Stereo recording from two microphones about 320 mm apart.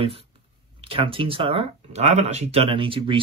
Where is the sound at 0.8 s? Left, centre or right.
Centre.